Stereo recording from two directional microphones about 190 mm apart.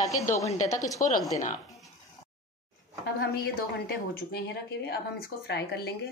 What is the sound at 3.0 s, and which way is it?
A woman's voice, 55° left (ahead or behind).